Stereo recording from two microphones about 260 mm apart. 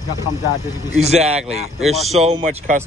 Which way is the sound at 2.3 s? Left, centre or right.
Right.